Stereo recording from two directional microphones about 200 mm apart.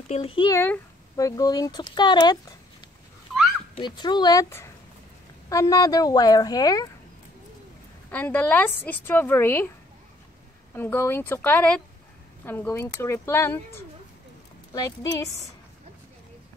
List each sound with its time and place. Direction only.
0.1 s speech: 25° left (ahead or behind)
0.6 s speech: 15° left (ahead or behind)
3.7 s speech: 20° left (ahead or behind)
8.1 s a woman's voice: 10° left (ahead or behind)
10.7 s a woman's voice: 10° left (ahead or behind)
14.7 s a woman's voice: 15° left (ahead or behind)